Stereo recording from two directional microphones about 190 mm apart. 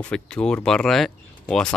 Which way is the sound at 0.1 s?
5° left (ahead or behind).